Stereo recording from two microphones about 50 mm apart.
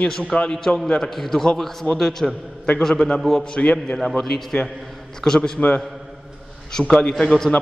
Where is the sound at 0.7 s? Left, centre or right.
Left.